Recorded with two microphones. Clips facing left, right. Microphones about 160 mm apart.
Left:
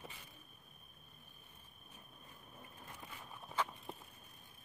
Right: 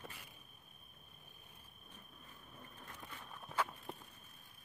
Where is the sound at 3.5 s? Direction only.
5° right (ahead or behind).